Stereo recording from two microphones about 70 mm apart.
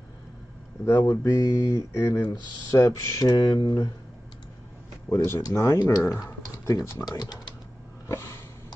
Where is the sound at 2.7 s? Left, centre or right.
Left.